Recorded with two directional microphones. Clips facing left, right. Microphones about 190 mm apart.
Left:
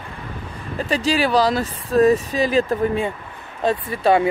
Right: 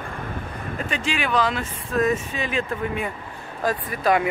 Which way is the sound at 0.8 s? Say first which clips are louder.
Left 8 dB; 35° left (ahead or behind).